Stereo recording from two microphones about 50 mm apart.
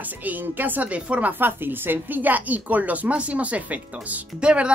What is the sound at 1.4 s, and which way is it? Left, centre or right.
A woman's voice, right.